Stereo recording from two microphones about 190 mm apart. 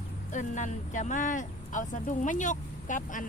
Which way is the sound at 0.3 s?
40° left (ahead or behind).